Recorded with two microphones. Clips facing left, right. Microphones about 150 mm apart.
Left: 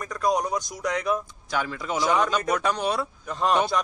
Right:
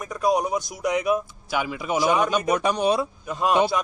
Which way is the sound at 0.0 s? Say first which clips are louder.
Right 2 dB; 10° right (ahead or behind).